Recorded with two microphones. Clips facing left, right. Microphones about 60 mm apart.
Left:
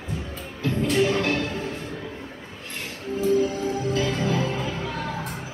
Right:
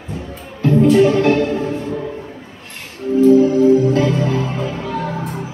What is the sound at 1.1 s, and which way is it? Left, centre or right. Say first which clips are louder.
Music: right 10 dB; right.